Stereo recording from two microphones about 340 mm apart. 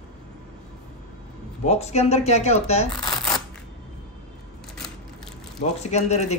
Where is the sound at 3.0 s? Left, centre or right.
Centre.